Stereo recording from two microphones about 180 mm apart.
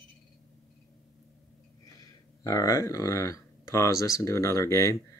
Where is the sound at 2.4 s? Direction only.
20° left (ahead or behind).